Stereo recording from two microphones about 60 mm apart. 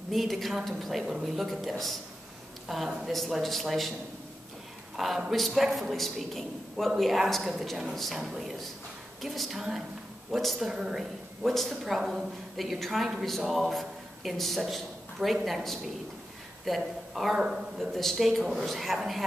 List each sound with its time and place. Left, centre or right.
0.1 s speech: centre
4.9 s a man's voice: centre